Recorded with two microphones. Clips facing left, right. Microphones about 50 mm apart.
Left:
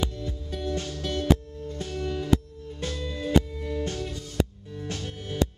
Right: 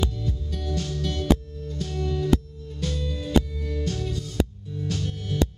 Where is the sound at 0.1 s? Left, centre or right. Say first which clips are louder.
Right 2 dB; left.